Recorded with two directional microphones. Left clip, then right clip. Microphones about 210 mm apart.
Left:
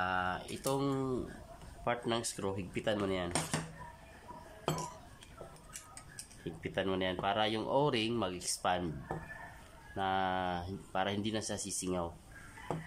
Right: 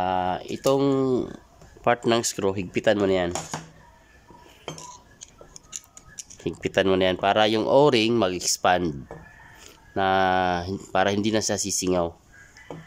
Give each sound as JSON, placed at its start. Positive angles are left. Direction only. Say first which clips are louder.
{"t": 0.0, "sound": "speech", "louder": "right 10 dB", "side_deg": -40}
{"t": 6.4, "sound": "speech", "louder": "right 14 dB", "side_deg": -50}
{"t": 9.9, "sound": "speech", "louder": "right 13 dB", "side_deg": -50}